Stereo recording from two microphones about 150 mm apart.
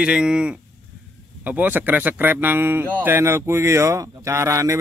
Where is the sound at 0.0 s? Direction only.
5° right (ahead or behind).